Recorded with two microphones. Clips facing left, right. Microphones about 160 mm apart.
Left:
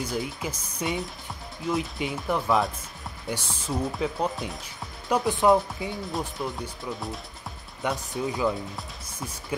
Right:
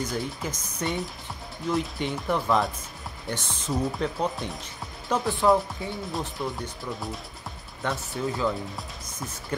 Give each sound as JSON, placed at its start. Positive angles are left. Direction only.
{"t": 0.0, "sound": "speech", "side_deg": 5}
{"t": 5.1, "sound": "speech", "side_deg": 20}
{"t": 6.1, "sound": "speech", "side_deg": 0}
{"t": 7.8, "sound": "speech", "side_deg": 15}